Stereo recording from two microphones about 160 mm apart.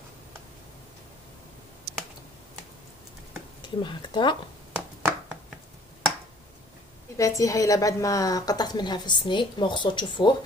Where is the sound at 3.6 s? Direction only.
30° left (ahead or behind).